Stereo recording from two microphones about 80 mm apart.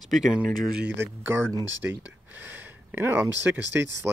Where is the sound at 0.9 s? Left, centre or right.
Right.